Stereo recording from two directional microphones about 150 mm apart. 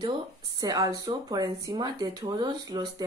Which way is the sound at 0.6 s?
25° right (ahead or behind).